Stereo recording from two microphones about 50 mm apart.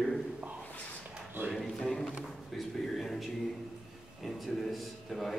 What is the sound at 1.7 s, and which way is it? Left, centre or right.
Speech, centre.